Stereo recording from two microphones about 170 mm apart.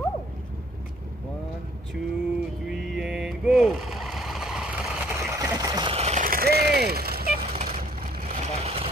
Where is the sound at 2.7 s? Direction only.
Centre (ahead or behind).